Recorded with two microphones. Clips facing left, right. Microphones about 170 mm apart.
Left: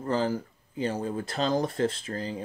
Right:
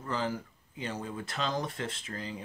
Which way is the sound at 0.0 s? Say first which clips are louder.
Left 6 dB; 35° left (ahead or behind).